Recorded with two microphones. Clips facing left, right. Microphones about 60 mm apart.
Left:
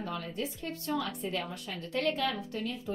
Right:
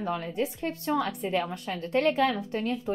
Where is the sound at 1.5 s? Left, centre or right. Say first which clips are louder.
Right 7 dB; right.